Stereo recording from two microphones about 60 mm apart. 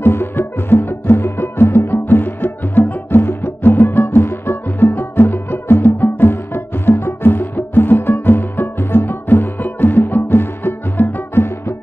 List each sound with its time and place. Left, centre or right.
0.0 s music: left